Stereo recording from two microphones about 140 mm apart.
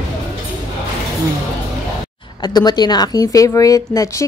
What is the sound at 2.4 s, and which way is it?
A woman's voice, 30° left (ahead or behind).